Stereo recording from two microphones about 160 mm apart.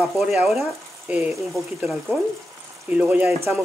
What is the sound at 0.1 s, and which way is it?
Speech, centre (ahead or behind).